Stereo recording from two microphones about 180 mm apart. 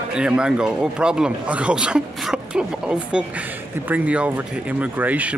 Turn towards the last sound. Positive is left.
turn(degrees=-10)  # may be behind; listen again after turning